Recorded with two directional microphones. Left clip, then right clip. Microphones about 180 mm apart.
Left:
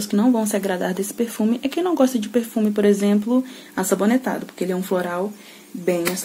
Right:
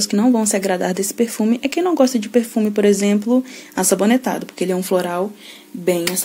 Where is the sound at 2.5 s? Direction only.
25° right (ahead or behind).